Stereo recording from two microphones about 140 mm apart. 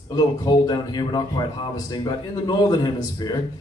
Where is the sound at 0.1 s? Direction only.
30° left (ahead or behind).